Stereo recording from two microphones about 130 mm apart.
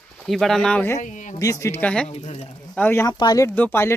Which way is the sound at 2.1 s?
50° left (ahead or behind).